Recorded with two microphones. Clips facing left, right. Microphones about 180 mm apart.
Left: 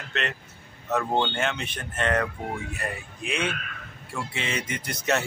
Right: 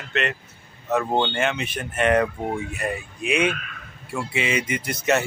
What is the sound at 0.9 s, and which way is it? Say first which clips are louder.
Speech: right 3 dB; 5° right (ahead or behind).